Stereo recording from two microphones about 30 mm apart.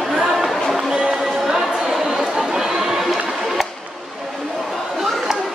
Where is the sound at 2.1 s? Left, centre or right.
Centre.